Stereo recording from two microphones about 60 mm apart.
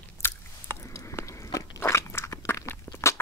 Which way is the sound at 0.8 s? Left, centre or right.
Left.